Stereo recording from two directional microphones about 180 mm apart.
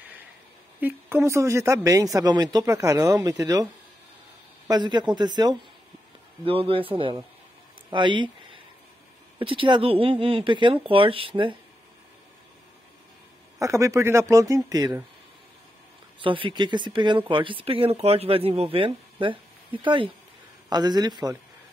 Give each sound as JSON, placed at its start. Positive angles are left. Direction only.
{"t": 0.7, "sound": "speech", "side_deg": -10}
{"t": 13.6, "sound": "speech", "side_deg": -15}
{"t": 16.2, "sound": "speech", "side_deg": -30}